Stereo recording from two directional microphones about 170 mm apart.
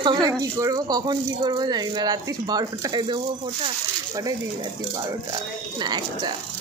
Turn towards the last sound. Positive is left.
turn(degrees=-25)  # may be behind; listen again after turning